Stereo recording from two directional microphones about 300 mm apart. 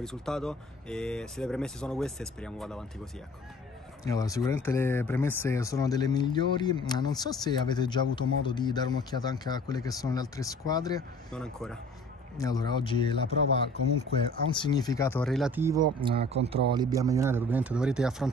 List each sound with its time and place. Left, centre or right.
0.0 s speech: centre
4.0 s speech: centre
11.3 s speech: centre
12.4 s speech: centre